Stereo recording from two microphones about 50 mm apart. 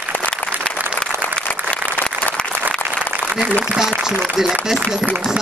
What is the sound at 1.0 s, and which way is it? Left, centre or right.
Applause, left.